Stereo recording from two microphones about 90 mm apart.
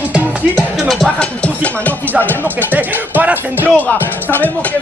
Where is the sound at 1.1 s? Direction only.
15° left (ahead or behind).